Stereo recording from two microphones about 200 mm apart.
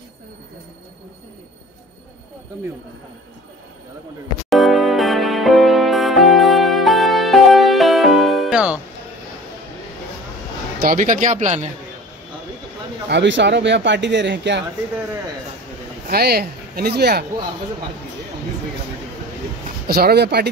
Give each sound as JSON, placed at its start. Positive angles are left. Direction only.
{"t": 4.5, "sound": "music", "side_deg": 0}
{"t": 10.8, "sound": "speech", "side_deg": -45}
{"t": 13.1, "sound": "speech", "side_deg": -60}
{"t": 16.1, "sound": "speech", "side_deg": -50}
{"t": 19.9, "sound": "speech", "side_deg": -50}